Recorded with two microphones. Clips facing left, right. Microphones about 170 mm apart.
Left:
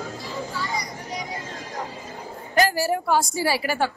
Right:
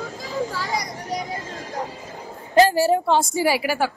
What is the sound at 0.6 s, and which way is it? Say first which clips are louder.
Speech: right 3 dB; 90° right.